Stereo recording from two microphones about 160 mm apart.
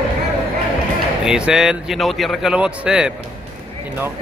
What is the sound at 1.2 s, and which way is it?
A man's voice, 5° right (ahead or behind).